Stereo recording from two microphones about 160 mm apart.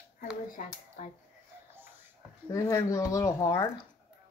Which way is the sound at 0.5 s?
50° left (ahead or behind).